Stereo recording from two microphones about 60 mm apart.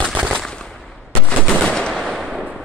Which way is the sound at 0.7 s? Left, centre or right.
Centre.